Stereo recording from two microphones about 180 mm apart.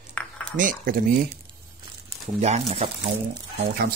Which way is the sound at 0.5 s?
50° right (ahead or behind).